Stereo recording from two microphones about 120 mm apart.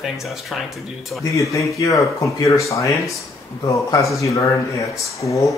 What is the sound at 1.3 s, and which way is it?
Speech, 25° left (ahead or behind).